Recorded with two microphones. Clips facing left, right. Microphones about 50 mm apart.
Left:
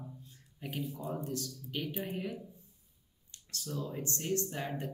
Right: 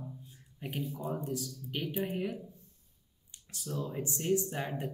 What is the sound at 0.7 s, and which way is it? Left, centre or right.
Speech, centre.